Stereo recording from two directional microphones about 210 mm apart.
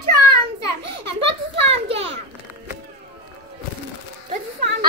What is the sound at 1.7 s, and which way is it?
Children playing, 30° right (ahead or behind).